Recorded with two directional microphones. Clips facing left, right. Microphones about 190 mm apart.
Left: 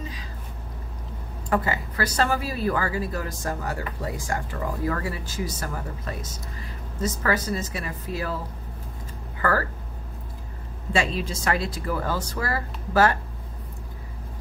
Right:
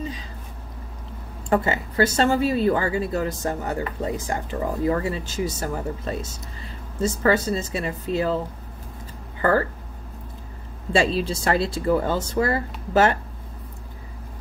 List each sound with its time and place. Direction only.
1.5 s a woman's voice: 25° right (ahead or behind)
9.4 s speech: 25° right (ahead or behind)
10.9 s a woman's voice: 30° right (ahead or behind)